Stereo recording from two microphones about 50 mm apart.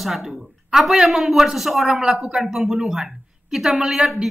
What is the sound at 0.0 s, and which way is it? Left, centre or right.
A woman's voice, centre.